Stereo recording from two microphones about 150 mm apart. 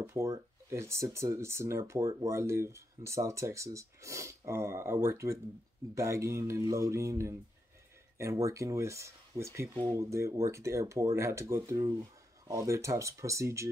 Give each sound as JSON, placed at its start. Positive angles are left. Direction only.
{"t": 0.0, "sound": "speech", "side_deg": -20}